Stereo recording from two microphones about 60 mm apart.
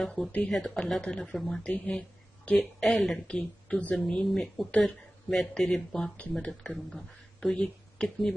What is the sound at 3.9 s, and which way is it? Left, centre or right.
Speech, centre.